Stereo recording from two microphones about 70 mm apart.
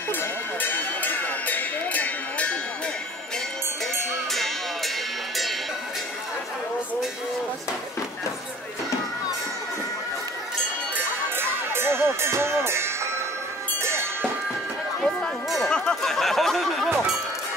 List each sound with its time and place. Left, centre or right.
0.1 s music: left
4.3 s music: centre
11.3 s music: right
15.0 s a sound: centre